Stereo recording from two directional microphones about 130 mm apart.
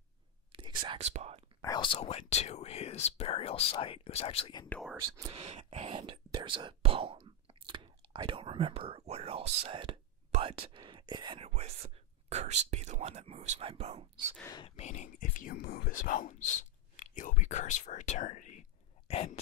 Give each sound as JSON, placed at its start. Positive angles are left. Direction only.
{"t": 0.5, "sound": "whispering", "side_deg": -40}
{"t": 0.9, "sound": "speech", "side_deg": -60}
{"t": 1.6, "sound": "speech", "side_deg": 35}
{"t": 4.7, "sound": "speech", "side_deg": 15}
{"t": 5.3, "sound": "whispering", "side_deg": -55}
{"t": 10.3, "sound": "speech", "side_deg": -40}
{"t": 11.4, "sound": "speech", "side_deg": -55}
{"t": 14.8, "sound": "speech", "side_deg": 65}
{"t": 19.0, "sound": "speech", "side_deg": 50}